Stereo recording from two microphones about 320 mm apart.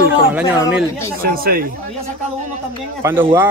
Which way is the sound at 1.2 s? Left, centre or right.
Right.